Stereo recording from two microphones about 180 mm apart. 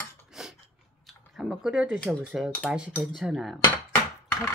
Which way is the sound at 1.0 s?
Centre (ahead or behind).